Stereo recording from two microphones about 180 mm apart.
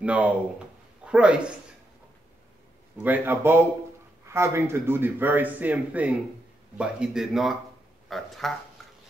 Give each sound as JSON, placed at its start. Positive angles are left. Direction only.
{"t": 0.0, "sound": "speech", "side_deg": -5}
{"t": 3.0, "sound": "speech", "side_deg": -10}